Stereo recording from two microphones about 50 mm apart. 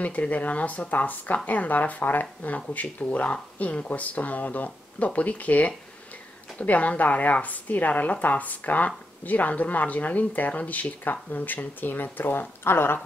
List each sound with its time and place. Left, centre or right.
0.0 s a woman's voice: left